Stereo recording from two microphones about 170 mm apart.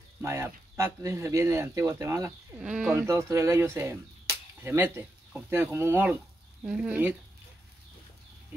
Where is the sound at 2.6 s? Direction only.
5° right (ahead or behind).